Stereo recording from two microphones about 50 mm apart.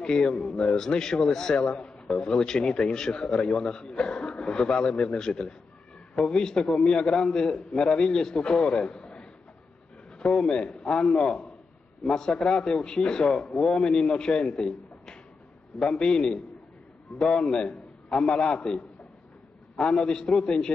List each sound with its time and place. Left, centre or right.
0.0 s a man's voice: centre
1.8 s a man's voice: centre
6.6 s a man's voice: centre
13.5 s a man's voice: centre
13.7 s a man's voice: centre